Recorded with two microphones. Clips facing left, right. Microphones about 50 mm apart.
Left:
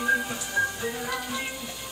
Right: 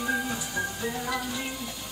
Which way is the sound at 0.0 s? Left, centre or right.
Centre.